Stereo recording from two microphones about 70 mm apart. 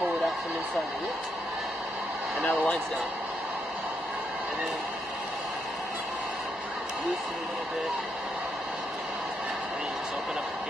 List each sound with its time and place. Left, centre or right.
2.4 s speech: left